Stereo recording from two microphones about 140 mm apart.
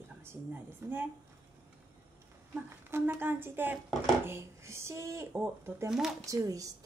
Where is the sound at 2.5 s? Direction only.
15° right (ahead or behind).